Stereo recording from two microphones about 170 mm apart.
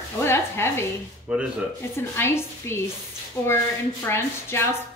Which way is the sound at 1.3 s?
5° right (ahead or behind).